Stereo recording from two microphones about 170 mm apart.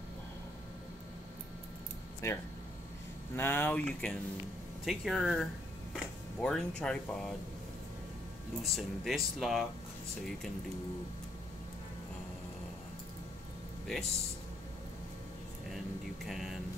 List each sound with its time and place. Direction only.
2.2 s speech: 15° left (ahead or behind)
8.6 s speech: centre (ahead or behind)
13.8 s speech: centre (ahead or behind)
16.3 s speech: centre (ahead or behind)